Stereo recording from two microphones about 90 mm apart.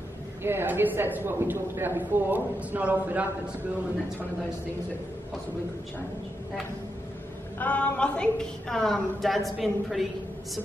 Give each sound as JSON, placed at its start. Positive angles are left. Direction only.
{"t": 0.4, "sound": "speech", "side_deg": -25}
{"t": 7.5, "sound": "a woman's voice", "side_deg": 15}